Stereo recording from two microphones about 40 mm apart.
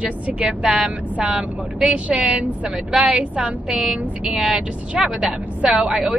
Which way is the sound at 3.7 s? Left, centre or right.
Centre.